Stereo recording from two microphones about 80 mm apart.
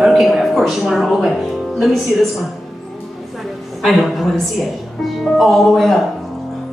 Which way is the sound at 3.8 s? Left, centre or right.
Centre.